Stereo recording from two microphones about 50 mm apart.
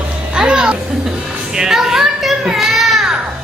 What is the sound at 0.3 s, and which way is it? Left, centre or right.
Music, centre.